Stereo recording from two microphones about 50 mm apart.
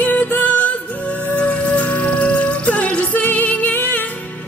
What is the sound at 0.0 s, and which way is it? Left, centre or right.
Music, left.